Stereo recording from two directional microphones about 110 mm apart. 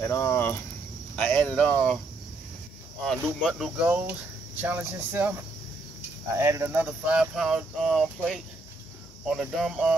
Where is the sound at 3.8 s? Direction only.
15° right (ahead or behind).